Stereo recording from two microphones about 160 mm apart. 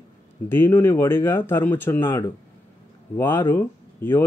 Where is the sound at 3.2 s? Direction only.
15° left (ahead or behind).